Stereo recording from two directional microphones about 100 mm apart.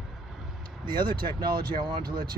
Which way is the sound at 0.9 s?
50° right (ahead or behind).